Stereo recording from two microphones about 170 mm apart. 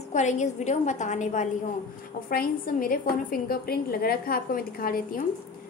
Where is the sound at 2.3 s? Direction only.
55° left (ahead or behind).